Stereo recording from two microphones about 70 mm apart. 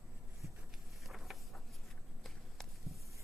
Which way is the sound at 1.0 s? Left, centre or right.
Centre.